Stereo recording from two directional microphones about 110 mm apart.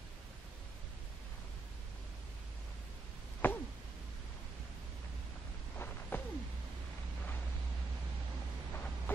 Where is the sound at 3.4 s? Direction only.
15° left (ahead or behind).